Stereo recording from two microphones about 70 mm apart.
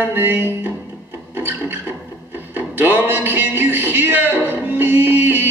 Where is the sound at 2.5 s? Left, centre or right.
Right.